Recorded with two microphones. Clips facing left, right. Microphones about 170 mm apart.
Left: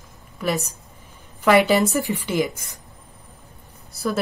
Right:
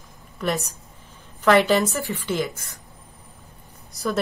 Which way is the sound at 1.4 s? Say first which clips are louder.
Left 1 dB; 10° left (ahead or behind).